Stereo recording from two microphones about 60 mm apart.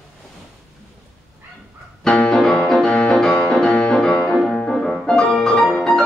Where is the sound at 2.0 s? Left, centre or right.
Centre.